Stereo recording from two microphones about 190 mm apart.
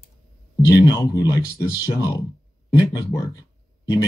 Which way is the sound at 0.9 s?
20° left (ahead or behind).